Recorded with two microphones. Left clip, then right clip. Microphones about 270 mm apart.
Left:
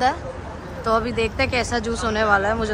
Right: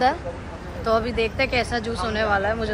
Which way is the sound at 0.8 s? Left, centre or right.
Centre.